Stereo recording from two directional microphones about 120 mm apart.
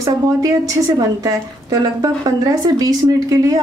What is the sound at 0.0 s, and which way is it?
A woman's voice, 30° right (ahead or behind).